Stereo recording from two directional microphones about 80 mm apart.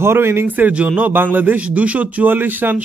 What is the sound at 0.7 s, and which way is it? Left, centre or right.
A man's voice, centre.